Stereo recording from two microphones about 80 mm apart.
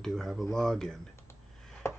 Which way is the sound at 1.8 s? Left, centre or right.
Left.